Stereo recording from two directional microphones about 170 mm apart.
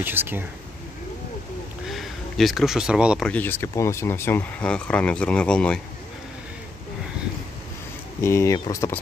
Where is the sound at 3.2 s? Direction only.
10° left (ahead or behind).